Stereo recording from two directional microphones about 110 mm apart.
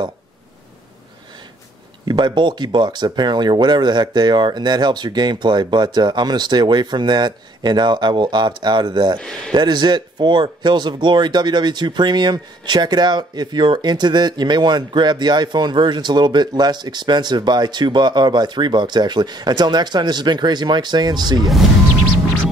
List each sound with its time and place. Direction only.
2.0 s speech: 45° right (ahead or behind)